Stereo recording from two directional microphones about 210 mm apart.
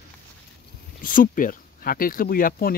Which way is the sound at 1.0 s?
40° left (ahead or behind).